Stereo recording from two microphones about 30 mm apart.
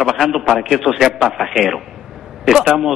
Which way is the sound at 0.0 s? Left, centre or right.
Centre.